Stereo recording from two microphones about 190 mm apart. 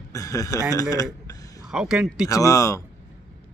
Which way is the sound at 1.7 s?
5° right (ahead or behind).